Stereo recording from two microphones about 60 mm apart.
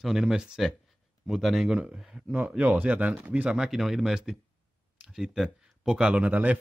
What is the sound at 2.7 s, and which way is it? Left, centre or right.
Speech, right.